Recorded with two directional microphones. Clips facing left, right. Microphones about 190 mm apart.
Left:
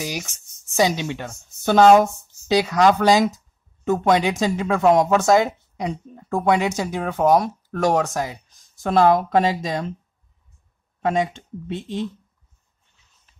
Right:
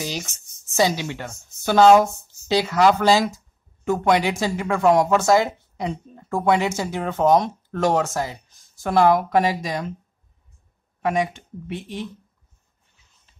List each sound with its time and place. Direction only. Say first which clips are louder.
0.3 s speech: even; 15° left (ahead or behind)
11.0 s speech: left 1 dB; 25° left (ahead or behind)